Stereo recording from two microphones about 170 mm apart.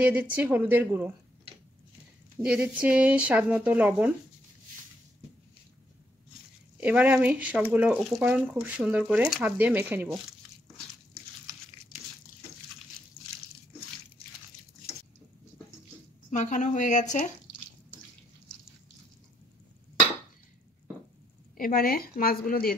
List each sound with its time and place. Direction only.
0.0 s speech: 10° right (ahead or behind)
2.4 s speech: 5° right (ahead or behind)
6.8 s speech: 10° right (ahead or behind)
16.3 s speech: 45° left (ahead or behind)
21.5 s a woman's voice: 55° left (ahead or behind)